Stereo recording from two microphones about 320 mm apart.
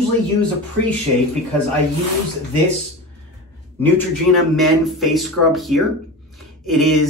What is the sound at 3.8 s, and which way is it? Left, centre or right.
Speech, centre.